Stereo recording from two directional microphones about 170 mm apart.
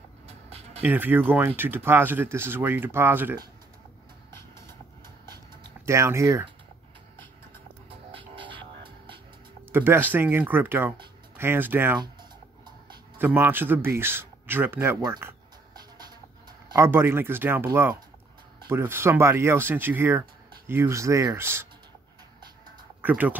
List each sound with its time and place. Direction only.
0.3 s music: 35° right (ahead or behind)
0.8 s speech: 10° right (ahead or behind)
4.3 s vehicle: 15° left (ahead or behind)
5.9 s speech: 15° right (ahead or behind)
8.1 s music: 30° right (ahead or behind)
9.7 s speech: 10° right (ahead or behind)
12.0 s music: 25° right (ahead or behind)
13.2 s speech: 10° right (ahead or behind)
15.0 s music: 15° right (ahead or behind)
16.6 s speech: 15° right (ahead or behind)
23.0 s speech: 10° right (ahead or behind)